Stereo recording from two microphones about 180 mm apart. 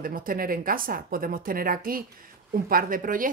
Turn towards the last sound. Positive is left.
turn(degrees=-50)  # may be behind; listen again after turning